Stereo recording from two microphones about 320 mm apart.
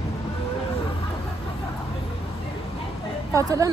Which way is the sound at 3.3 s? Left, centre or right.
Centre.